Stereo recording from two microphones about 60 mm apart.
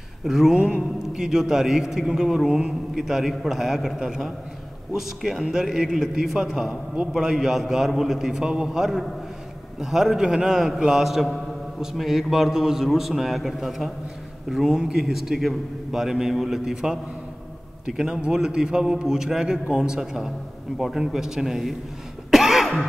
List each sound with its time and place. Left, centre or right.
0.2 s a man's voice: centre
0.6 s speech: right
1.1 s a man's voice: centre
22.3 s cough: centre